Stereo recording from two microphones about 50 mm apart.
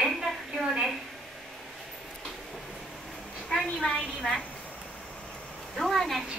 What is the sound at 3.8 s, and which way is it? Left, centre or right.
Speech, left.